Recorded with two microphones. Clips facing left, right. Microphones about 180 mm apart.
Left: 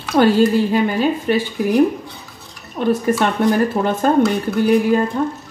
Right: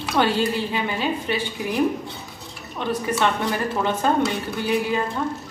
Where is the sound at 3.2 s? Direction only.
50° left (ahead or behind).